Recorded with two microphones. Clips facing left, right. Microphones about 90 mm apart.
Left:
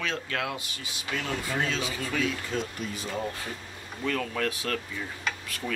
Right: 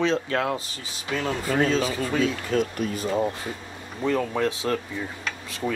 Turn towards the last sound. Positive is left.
turn(degrees=-25)  # may be behind; listen again after turning